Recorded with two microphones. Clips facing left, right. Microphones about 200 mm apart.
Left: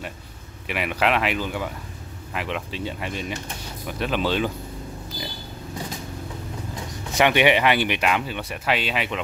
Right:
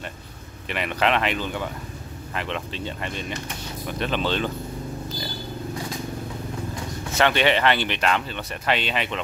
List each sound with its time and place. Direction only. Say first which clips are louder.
0.7 s speech: even; 5° left (ahead or behind)
7.2 s speech: left 2 dB; 15° left (ahead or behind)